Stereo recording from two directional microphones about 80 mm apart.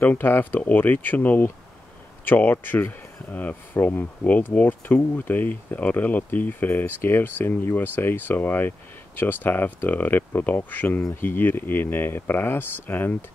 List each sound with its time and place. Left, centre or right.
0.0 s speech: left